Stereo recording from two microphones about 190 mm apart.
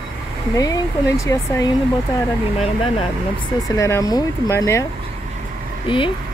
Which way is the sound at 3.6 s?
15° left (ahead or behind).